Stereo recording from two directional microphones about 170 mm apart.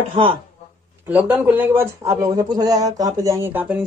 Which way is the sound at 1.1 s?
10° right (ahead or behind).